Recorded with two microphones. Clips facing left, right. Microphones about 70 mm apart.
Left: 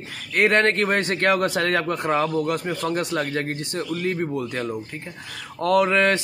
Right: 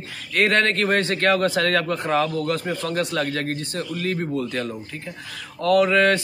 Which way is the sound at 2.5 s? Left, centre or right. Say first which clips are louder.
Even; centre.